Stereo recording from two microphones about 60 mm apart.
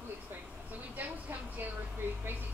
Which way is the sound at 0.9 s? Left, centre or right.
Right.